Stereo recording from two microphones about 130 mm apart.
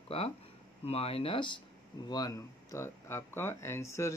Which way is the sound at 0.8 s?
50° left (ahead or behind).